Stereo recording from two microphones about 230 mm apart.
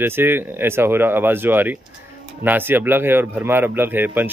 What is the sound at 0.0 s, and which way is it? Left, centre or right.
Speech, centre.